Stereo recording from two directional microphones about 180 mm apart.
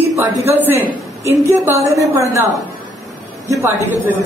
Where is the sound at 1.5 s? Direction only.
15° right (ahead or behind).